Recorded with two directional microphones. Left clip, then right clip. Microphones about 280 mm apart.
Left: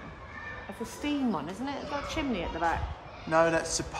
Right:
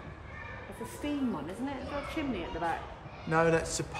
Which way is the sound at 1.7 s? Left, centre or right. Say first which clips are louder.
Left 5 dB; centre.